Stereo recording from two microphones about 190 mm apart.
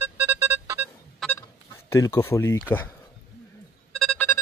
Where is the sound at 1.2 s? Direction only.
Centre (ahead or behind).